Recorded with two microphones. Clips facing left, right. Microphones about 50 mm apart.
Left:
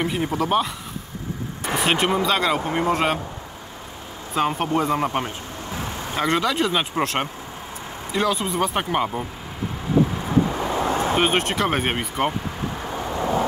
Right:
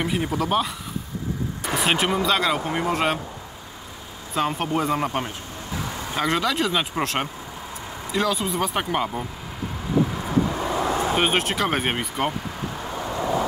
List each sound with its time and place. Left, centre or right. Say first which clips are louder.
0.0 s speech: left 1 dB; centre
4.4 s speech: left 2 dB; centre
10.6 s vehicle: left 1 dB; left
11.1 s speech: left 1 dB; centre
13.1 s vehicle: left 1 dB; left